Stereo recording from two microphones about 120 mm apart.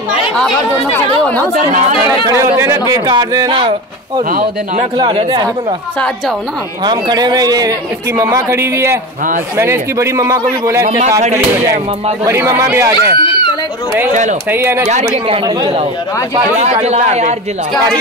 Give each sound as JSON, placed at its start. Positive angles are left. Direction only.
{"t": 2.0, "sound": "a man's voice", "side_deg": -25}
{"t": 4.9, "sound": "a man's voice", "side_deg": -40}
{"t": 6.8, "sound": "a man's voice", "side_deg": -35}
{"t": 11.0, "sound": "a man's voice", "side_deg": -75}
{"t": 12.3, "sound": "a man's voice", "side_deg": -20}
{"t": 13.2, "sound": "a sound", "side_deg": 45}
{"t": 14.5, "sound": "a man's voice", "side_deg": -20}
{"t": 14.9, "sound": "a man's voice", "side_deg": -70}
{"t": 16.8, "sound": "a man's voice", "side_deg": -65}